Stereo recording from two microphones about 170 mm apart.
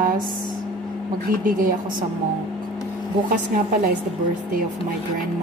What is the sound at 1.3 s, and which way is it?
Speech, 55° right (ahead or behind).